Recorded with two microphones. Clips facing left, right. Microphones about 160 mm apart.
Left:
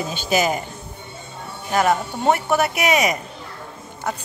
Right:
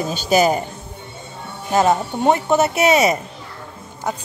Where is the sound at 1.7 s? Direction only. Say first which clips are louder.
Right 3 dB; 25° right (ahead or behind).